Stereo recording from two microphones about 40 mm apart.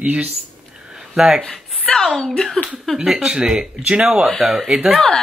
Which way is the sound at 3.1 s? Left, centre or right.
Centre.